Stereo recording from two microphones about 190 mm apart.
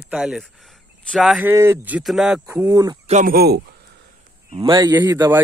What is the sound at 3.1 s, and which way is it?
Speech, 45° right (ahead or behind).